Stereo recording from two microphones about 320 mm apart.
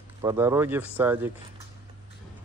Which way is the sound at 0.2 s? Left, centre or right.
Centre.